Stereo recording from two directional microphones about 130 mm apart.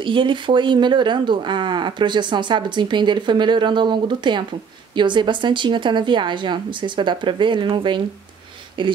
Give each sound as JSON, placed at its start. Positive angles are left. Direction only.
{"t": 0.0, "sound": "speech", "side_deg": -40}